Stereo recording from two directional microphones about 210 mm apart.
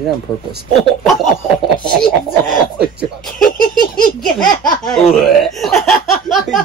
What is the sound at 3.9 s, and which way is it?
Speech, centre (ahead or behind).